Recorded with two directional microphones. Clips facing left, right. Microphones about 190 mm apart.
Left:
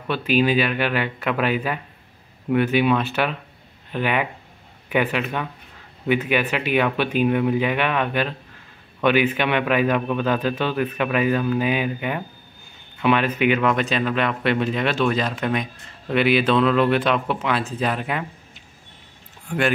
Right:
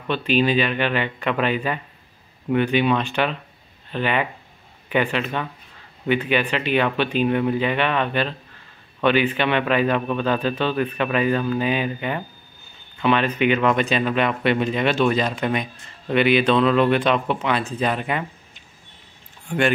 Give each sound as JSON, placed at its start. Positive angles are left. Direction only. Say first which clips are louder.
{"t": 0.1, "sound": "a man's voice", "louder": "even", "side_deg": 10}